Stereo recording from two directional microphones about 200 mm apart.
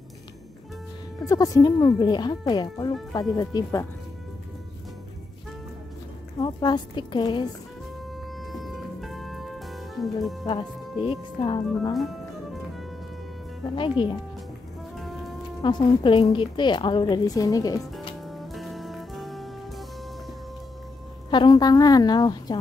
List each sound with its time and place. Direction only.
1.2 s speech: 15° left (ahead or behind)
6.4 s speech: 20° left (ahead or behind)
8.5 s music: centre (ahead or behind)
10.4 s speech: 25° left (ahead or behind)
11.9 s speech: centre (ahead or behind)
13.7 s speech: 25° left (ahead or behind)
15.0 s music: centre (ahead or behind)
15.6 s speech: 25° left (ahead or behind)
18.2 s music: centre (ahead or behind)
21.3 s speech: 20° left (ahead or behind)